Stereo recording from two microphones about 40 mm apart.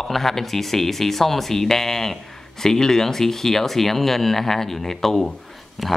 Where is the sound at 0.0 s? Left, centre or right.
Centre.